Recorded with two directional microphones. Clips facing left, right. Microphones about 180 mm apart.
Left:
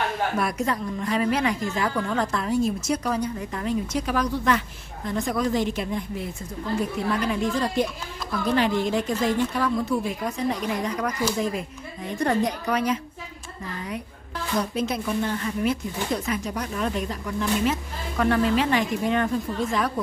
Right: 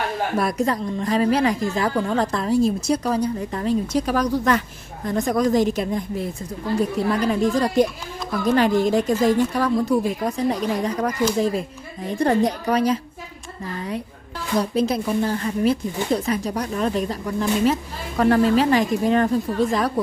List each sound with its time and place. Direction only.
0.4 s a woman's voice: 35° right (ahead or behind)
14.6 s a woman's voice: 35° right (ahead or behind)